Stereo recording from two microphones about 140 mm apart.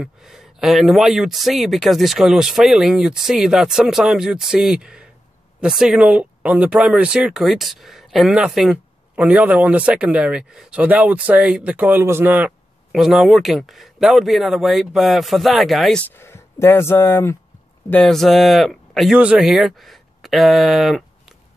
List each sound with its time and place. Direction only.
0.0 s speech: 5° right (ahead or behind)
12.9 s speech: centre (ahead or behind)
16.2 s speech: 20° left (ahead or behind); by 21.4 s centre (ahead or behind)